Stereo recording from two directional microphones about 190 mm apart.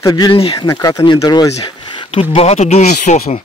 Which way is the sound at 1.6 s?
25° left (ahead or behind).